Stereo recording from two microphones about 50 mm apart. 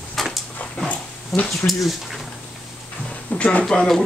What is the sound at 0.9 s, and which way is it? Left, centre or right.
Dog, left.